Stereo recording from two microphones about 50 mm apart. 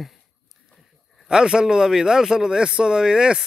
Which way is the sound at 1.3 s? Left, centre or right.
Centre.